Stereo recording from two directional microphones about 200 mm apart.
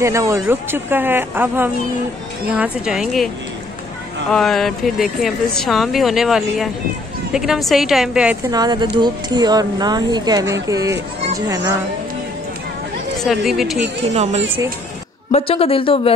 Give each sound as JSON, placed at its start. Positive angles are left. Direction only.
{"t": 0.0, "sound": "speech", "side_deg": -15}
{"t": 4.3, "sound": "speech", "side_deg": 0}
{"t": 8.5, "sound": "speech", "side_deg": -20}
{"t": 13.2, "sound": "speech", "side_deg": 0}
{"t": 14.1, "sound": "speech", "side_deg": -35}
{"t": 15.3, "sound": "a woman's voice", "side_deg": 30}